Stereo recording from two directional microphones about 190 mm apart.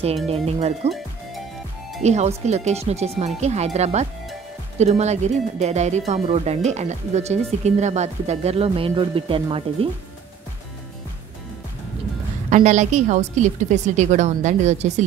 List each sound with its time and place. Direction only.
0.3 s speech: 35° right (ahead or behind)
2.0 s speech: 35° right (ahead or behind)
12.4 s speech: 40° right (ahead or behind)